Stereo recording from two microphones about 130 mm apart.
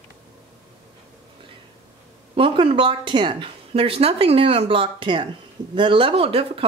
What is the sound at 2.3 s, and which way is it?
Speech, 45° right (ahead or behind).